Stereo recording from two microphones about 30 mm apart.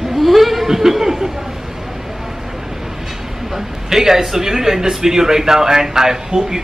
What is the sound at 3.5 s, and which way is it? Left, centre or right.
A man's voice, centre.